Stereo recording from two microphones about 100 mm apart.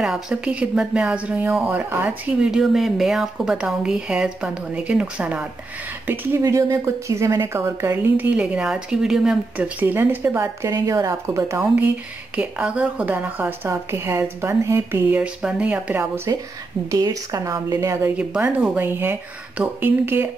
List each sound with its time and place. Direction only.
0.0 s a woman's voice: 10° right (ahead or behind)
2.4 s a woman's voice: 5° right (ahead or behind)
6.4 s a woman's voice: 30° right (ahead or behind); by 9.4 s 5° right (ahead or behind)
9.6 s a woman's voice: 15° right (ahead or behind)
12.4 s a woman's voice: 10° right (ahead or behind)
15.1 s a woman's voice: 10° right (ahead or behind)
16.9 s speech: 35° right (ahead or behind)
18.1 s a woman's voice: 10° right (ahead or behind)